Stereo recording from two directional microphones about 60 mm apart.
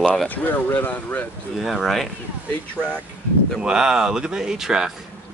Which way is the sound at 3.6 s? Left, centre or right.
Centre.